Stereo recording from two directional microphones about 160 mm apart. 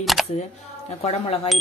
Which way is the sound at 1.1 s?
40° left (ahead or behind).